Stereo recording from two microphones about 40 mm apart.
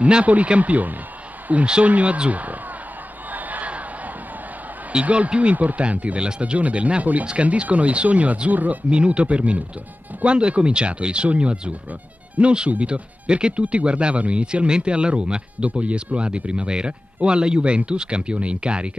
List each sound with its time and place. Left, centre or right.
0.0 s speech: right
3.3 s crowd: right
5.0 s speech: right
8.9 s speech: right
15.7 s speech: right